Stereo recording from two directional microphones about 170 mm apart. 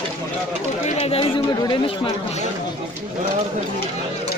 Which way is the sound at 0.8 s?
35° left (ahead or behind).